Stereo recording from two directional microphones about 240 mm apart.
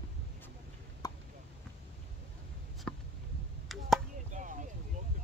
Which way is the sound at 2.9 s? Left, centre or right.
Centre.